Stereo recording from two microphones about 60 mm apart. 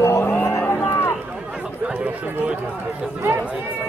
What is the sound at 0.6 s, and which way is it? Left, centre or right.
Music, left.